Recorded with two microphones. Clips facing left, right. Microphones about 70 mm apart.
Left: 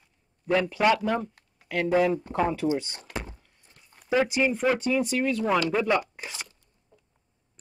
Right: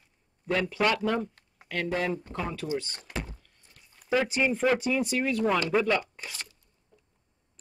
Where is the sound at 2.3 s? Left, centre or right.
Left.